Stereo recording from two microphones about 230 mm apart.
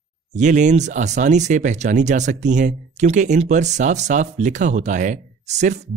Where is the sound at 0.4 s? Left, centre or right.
Right.